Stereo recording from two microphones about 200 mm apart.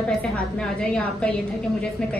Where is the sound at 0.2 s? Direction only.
5° left (ahead or behind).